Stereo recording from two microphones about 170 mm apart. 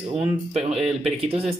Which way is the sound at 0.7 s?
Centre (ahead or behind).